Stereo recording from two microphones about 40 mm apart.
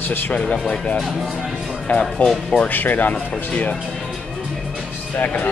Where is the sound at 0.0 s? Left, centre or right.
Left.